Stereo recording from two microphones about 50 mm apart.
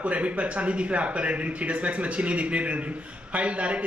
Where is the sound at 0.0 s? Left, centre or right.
Right.